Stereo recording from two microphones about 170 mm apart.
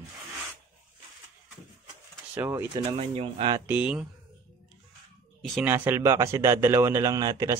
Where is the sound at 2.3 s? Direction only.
10° right (ahead or behind).